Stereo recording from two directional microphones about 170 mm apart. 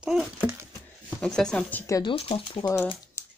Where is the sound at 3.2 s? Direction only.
15° left (ahead or behind).